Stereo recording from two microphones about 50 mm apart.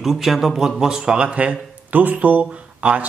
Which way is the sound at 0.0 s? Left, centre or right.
Centre.